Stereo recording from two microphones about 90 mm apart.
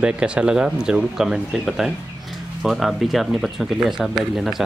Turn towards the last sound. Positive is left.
turn(degrees=-5)  # may be behind; listen again after turning